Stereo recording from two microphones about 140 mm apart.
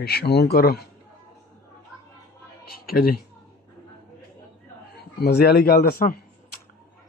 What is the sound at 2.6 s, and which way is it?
Speech, 90° left.